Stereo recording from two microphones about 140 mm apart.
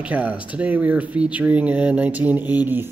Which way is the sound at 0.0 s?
10° right (ahead or behind).